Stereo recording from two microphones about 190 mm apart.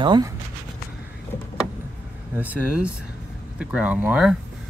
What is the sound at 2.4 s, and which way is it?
Speech, 5° right (ahead or behind).